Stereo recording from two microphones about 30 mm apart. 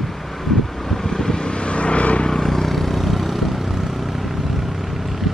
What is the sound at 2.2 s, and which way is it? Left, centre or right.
Vehicle, centre.